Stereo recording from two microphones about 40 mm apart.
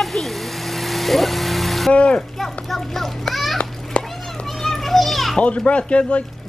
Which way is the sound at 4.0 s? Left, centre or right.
Left.